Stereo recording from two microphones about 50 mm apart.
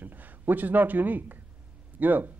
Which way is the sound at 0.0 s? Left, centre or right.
Right.